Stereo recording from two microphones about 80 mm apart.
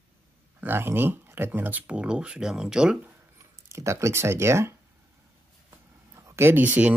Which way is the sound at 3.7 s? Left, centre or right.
Right.